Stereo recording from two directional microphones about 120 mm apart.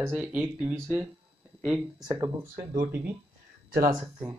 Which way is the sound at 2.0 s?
25° right (ahead or behind).